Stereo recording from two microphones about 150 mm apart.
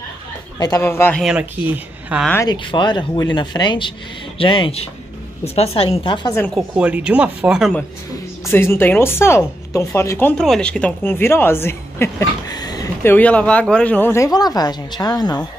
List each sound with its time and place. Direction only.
0.6 s a woman's voice: 20° left (ahead or behind)
1.2 s speech: 10° right (ahead or behind)
2.4 s speech: 30° left (ahead or behind)
6.8 s speech: 5° right (ahead or behind)
8.5 s a woman's voice: 15° left (ahead or behind)
13.0 s speech: 10° left (ahead or behind); by 15.4 s 25° left (ahead or behind)